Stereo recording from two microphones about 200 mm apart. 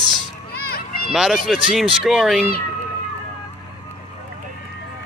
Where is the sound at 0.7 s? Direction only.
45° left (ahead or behind).